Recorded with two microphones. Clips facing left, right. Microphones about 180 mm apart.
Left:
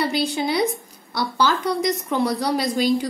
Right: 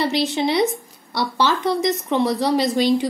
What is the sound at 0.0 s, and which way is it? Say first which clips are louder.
Speech: right 2 dB; centre (ahead or behind).